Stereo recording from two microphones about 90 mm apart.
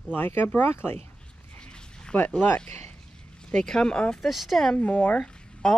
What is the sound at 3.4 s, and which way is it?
Speech, 5° left (ahead or behind).